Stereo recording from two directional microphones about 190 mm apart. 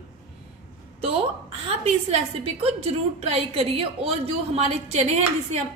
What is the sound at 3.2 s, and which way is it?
A woman's voice, 30° right (ahead or behind).